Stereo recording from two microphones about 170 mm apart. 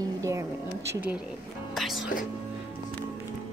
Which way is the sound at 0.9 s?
10° right (ahead or behind).